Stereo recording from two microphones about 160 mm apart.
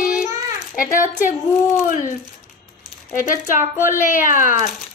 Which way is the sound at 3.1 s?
60° left (ahead or behind).